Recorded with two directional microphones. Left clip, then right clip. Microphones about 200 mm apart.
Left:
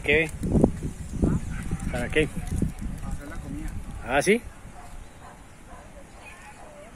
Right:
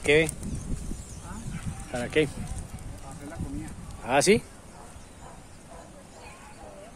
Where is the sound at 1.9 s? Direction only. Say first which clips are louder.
Left 1 dB; centre (ahead or behind).